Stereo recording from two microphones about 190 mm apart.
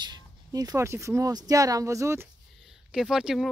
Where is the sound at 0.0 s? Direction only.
20° right (ahead or behind).